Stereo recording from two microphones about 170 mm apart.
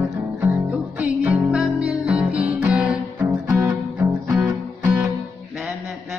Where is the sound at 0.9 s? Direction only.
10° right (ahead or behind).